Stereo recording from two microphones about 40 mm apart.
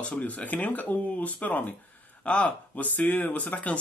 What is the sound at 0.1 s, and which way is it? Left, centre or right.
Speech, left.